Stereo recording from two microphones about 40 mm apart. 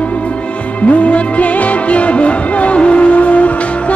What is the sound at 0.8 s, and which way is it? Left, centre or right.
Music, left.